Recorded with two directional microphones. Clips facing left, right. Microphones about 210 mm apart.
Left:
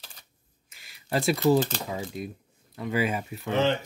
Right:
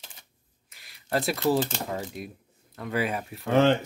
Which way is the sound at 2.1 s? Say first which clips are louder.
Left 3 dB; 5° right (ahead or behind).